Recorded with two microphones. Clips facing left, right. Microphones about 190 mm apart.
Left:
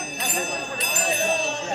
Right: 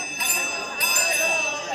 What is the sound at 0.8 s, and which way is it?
Jingle bell, 25° left (ahead or behind).